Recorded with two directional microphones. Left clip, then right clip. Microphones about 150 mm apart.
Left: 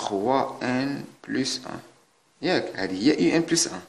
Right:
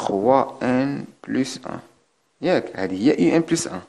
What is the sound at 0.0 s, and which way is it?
Speech, 45° right (ahead or behind).